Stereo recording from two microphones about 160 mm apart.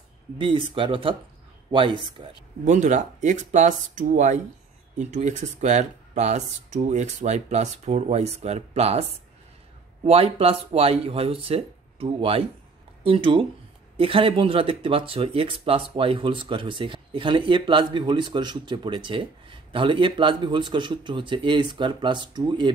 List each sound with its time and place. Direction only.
0.4 s speech: 30° right (ahead or behind)
2.6 s speech: 50° right (ahead or behind); by 22.7 s 30° right (ahead or behind)